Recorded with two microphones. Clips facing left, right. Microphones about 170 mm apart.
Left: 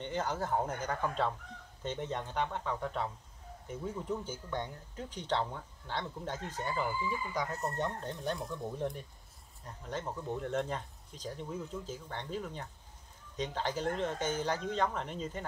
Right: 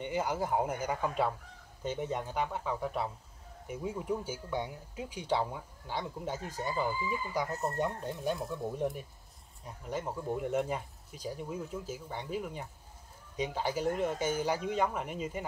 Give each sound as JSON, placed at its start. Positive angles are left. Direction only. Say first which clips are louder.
{"t": 0.0, "sound": "speech", "louder": "right 2 dB", "side_deg": -10}